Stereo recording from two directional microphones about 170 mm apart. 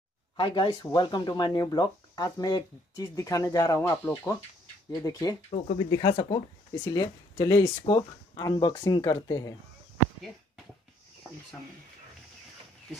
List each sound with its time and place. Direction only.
0.4 s speech: 25° left (ahead or behind)